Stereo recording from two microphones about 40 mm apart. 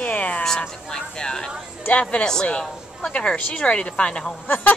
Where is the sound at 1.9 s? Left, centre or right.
Left.